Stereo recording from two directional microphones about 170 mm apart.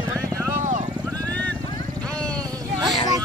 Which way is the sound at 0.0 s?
20° right (ahead or behind).